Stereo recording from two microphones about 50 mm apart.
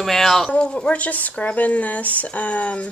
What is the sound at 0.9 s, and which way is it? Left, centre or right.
Speech, left.